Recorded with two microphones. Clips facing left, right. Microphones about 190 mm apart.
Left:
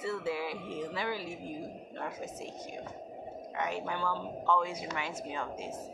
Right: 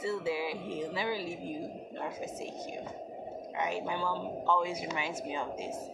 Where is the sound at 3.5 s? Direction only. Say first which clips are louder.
Right 1 dB; 15° right (ahead or behind).